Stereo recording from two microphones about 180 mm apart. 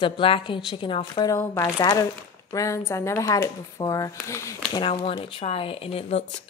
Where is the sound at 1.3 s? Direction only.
15° left (ahead or behind).